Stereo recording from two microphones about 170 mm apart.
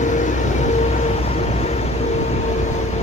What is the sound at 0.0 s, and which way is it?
Vehicle, 45° left (ahead or behind).